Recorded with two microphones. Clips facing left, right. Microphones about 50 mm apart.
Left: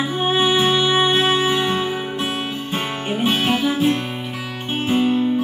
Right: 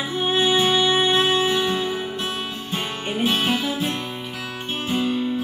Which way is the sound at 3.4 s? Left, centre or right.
Centre.